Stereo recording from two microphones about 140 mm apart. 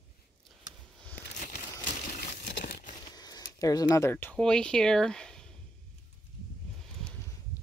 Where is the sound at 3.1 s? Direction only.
25° left (ahead or behind).